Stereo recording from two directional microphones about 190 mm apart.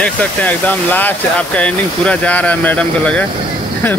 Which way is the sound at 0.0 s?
5° left (ahead or behind).